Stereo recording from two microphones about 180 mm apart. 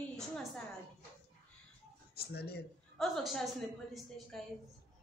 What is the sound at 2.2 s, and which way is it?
Speech, 65° left (ahead or behind).